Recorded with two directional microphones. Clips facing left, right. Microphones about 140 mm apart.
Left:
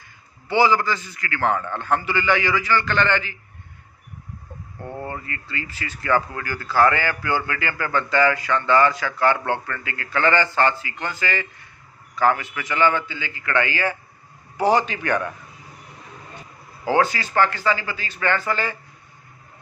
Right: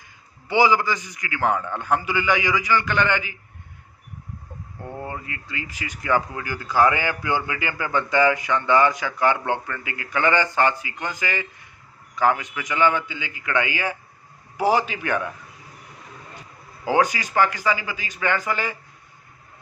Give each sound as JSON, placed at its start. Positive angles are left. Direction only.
{"t": 0.5, "sound": "speech", "side_deg": -15}
{"t": 4.8, "sound": "speech", "side_deg": -10}
{"t": 16.8, "sound": "speech", "side_deg": -15}